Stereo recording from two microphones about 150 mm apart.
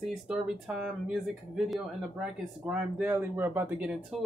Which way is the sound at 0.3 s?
5° right (ahead or behind).